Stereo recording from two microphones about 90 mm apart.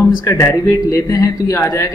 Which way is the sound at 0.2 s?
35° left (ahead or behind).